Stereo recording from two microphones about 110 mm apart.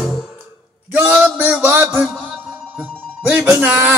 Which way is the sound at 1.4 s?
15° right (ahead or behind).